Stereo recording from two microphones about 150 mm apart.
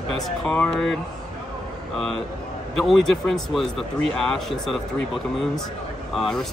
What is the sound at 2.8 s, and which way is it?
Speech, centre (ahead or behind).